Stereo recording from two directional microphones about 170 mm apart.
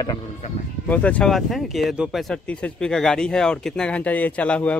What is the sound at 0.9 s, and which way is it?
Speech, 10° left (ahead or behind).